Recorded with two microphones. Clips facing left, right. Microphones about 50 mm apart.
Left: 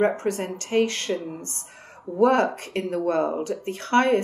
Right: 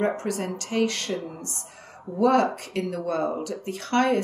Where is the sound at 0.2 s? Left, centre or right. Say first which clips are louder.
Left 2 dB; left.